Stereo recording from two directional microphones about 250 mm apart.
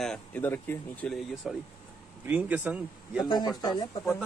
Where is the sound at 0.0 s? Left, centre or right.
Centre.